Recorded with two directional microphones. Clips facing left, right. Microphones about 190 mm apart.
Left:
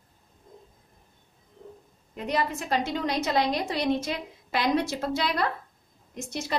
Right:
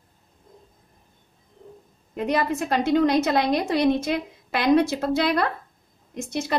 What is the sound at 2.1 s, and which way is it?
A woman's voice, 55° right (ahead or behind).